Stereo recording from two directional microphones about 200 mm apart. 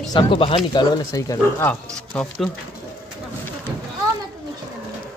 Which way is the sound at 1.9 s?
5° left (ahead or behind).